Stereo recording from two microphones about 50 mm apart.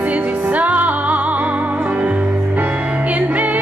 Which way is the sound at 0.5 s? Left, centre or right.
Right.